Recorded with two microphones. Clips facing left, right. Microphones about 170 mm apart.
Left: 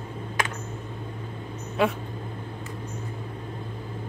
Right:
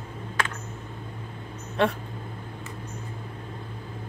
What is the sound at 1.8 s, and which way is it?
Speech, 5° left (ahead or behind).